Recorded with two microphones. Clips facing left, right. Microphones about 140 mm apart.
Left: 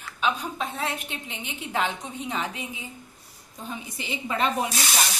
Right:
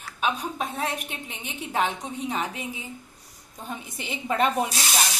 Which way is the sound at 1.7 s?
35° right (ahead or behind).